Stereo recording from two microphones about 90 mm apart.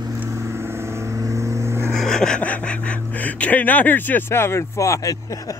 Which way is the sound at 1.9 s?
5° left (ahead or behind).